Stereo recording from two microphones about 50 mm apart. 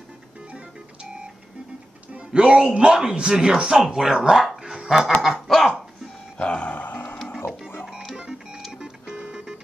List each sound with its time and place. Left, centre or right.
2.1 s speech: centre
4.6 s a sound: centre
6.3 s music: left
8.2 s music: centre